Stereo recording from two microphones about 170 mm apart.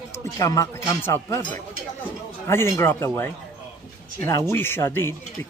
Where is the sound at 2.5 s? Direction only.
15° left (ahead or behind).